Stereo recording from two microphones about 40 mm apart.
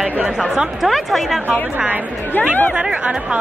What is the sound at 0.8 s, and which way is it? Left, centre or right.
Speech, centre.